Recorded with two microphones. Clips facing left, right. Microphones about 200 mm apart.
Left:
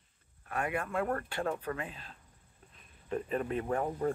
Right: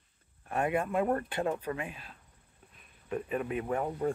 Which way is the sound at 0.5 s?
20° right (ahead or behind).